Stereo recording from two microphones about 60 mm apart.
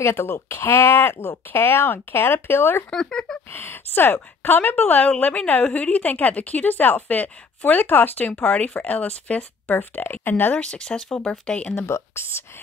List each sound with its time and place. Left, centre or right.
0.0 s speech: left
2.9 s speech: centre
3.5 s a woman's voice: left
10.5 s speech: centre